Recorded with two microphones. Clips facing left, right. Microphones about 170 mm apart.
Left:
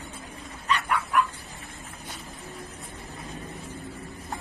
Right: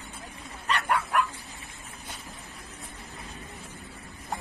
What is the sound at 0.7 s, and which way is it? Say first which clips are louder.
Dog: left 1 dB; 70° right (ahead or behind).